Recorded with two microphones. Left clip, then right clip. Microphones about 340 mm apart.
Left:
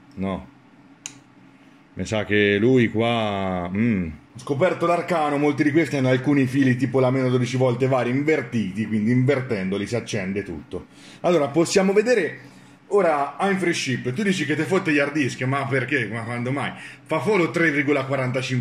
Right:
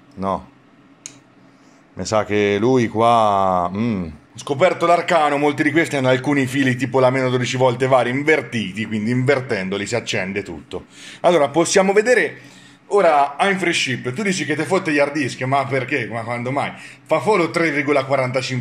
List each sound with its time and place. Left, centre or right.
2.9 s speech: right
4.4 s a man's voice: right